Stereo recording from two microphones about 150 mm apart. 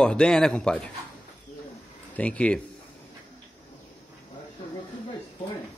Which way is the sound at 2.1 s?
10° left (ahead or behind).